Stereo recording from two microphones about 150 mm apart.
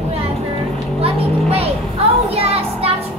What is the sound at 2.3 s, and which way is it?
Child singing, 40° right (ahead or behind).